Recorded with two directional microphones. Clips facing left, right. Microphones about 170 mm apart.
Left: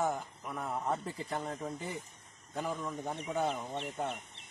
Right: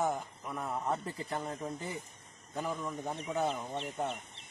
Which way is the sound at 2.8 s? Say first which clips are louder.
Even; 5° right (ahead or behind).